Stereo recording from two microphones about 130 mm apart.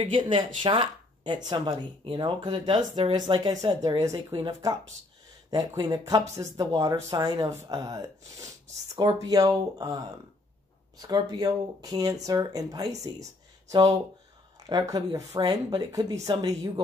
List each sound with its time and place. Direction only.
0.0 s speech: 40° right (ahead or behind)